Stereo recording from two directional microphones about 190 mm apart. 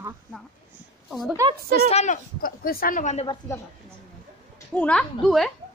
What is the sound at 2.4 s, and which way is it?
Speech, 50° left (ahead or behind).